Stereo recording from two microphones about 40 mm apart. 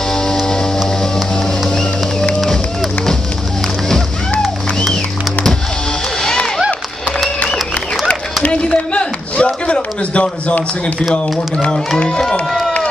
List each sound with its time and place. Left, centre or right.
0.1 s music: centre
2.4 s run: centre
8.4 s a sound: centre
12.1 s speech: centre